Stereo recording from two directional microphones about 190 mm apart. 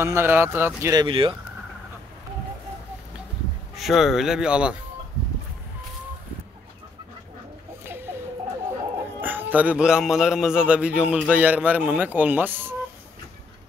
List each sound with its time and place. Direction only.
0.0 s a man's voice: 10° right (ahead or behind)
1.0 s speech: 30° right (ahead or behind)
3.7 s speech: centre (ahead or behind)
7.8 s chicken: 10° right (ahead or behind)
9.2 s a man's voice: 10° right (ahead or behind)